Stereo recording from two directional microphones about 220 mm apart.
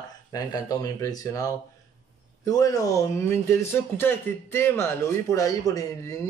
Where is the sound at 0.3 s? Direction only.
15° left (ahead or behind).